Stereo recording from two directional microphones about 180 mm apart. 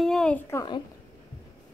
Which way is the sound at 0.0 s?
5° left (ahead or behind).